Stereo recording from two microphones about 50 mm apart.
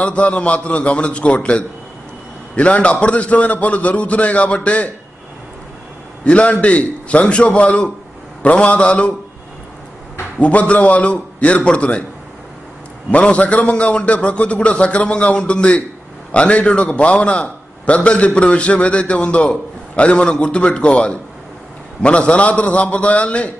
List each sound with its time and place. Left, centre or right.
0.0 s a man's voice: left
6.2 s a man's voice: left
10.4 s a man's voice: left
13.1 s a man's voice: left